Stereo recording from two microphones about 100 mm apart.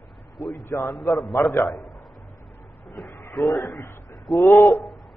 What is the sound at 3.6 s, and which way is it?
Speech, 20° left (ahead or behind).